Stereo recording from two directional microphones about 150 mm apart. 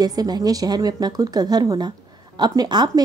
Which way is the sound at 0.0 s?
25° right (ahead or behind).